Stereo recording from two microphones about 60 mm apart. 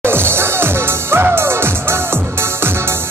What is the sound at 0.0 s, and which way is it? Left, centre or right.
Music, right.